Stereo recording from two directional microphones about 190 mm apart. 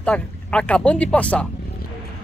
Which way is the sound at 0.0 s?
5° left (ahead or behind).